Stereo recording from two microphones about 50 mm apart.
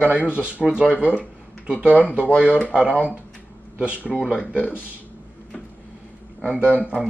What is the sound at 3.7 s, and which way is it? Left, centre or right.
Speech, right.